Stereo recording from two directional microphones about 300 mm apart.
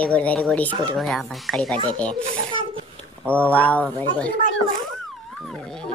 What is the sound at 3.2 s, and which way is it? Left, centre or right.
Speech, centre.